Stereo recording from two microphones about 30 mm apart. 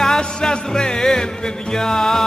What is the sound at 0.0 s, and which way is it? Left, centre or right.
Music, left.